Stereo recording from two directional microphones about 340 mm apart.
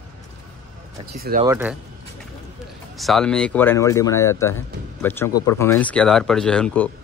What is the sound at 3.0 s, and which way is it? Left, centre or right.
Speech, centre.